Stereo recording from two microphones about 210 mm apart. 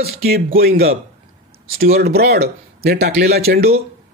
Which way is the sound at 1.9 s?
50° right (ahead or behind).